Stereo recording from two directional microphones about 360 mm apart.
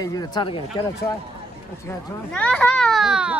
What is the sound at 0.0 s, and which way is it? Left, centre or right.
Speech, centre.